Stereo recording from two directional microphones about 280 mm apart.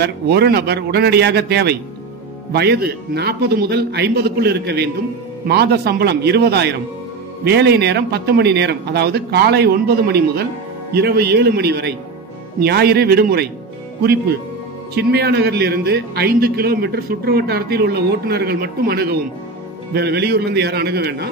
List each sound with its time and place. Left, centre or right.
0.0 s a man's voice: right
15.0 s a man's voice: right